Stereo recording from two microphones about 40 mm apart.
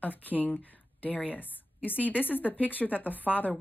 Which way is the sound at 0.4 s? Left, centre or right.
Left.